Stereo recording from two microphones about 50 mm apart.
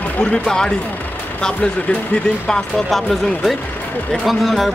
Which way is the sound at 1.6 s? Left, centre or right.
Left.